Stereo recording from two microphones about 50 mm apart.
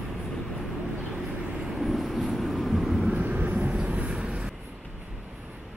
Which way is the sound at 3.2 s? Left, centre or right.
Right.